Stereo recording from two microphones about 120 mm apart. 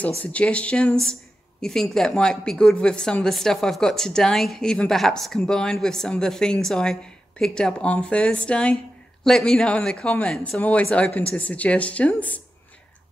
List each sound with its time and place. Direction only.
0.2 s speech: 10° left (ahead or behind)